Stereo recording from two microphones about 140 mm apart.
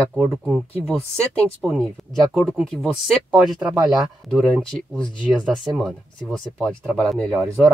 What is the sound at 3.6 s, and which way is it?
Speech, 30° right (ahead or behind).